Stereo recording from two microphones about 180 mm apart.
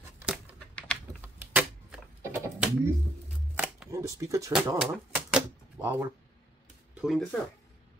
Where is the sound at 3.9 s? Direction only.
15° right (ahead or behind).